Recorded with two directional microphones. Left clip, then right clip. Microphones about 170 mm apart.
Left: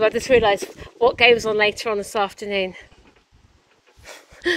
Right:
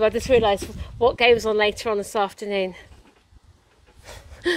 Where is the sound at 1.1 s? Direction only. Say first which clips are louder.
Left 2 dB; 10° right (ahead or behind).